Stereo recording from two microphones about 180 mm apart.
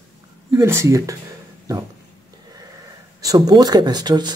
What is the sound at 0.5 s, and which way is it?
Speech, 15° right (ahead or behind).